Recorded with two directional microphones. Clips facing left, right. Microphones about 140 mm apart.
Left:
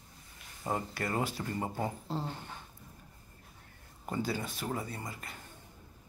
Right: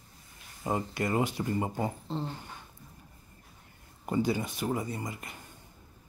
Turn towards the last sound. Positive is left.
turn(degrees=-15)  # may be behind; listen again after turning